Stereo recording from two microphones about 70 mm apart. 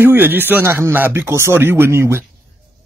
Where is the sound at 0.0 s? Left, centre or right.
Right.